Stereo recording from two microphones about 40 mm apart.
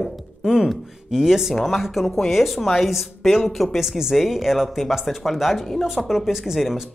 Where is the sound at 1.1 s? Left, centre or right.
Centre.